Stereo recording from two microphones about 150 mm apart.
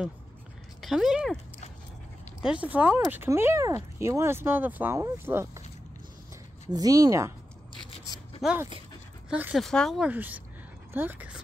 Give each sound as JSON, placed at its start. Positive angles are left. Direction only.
{"t": 0.7, "sound": "speech", "side_deg": 0}
{"t": 2.4, "sound": "speech", "side_deg": -10}
{"t": 6.7, "sound": "speech", "side_deg": -25}
{"t": 8.4, "sound": "speech", "side_deg": 0}
{"t": 10.0, "sound": "speech", "side_deg": -10}